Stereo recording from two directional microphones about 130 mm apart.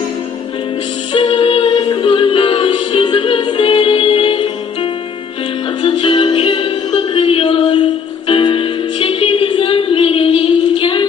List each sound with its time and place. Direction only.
1.1 s music: 40° left (ahead or behind)
5.8 s music: 40° left (ahead or behind)